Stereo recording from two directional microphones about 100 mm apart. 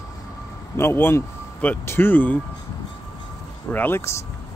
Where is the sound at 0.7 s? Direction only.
25° left (ahead or behind).